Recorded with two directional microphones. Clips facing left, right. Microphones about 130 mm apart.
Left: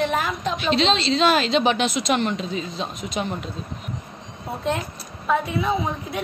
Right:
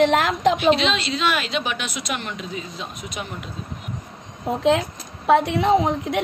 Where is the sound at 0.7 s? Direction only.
30° left (ahead or behind).